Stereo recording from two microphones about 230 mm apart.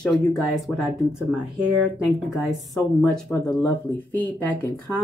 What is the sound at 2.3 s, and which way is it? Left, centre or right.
Speech, centre.